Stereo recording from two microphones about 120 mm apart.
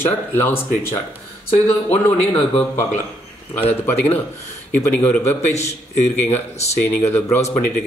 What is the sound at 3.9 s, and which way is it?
Speech, 15° left (ahead or behind).